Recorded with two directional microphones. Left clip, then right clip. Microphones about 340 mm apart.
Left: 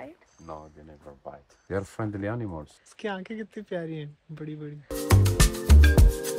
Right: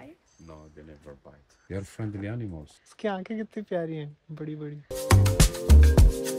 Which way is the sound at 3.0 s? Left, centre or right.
Right.